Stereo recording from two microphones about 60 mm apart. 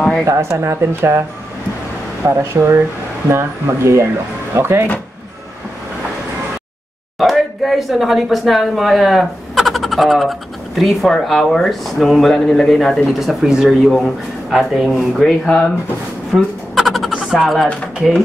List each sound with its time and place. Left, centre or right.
0.3 s speech: right
2.2 s speech: right
7.2 s speech: centre
13.0 s speech: centre
16.7 s a sound: centre